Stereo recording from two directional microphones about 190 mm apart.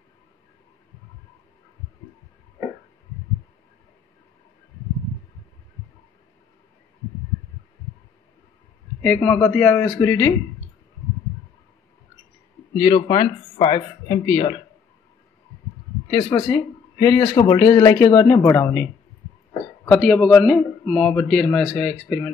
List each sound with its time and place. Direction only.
9.0 s speech: 10° left (ahead or behind)
12.7 s speech: 25° left (ahead or behind)
16.1 s a man's voice: 20° left (ahead or behind)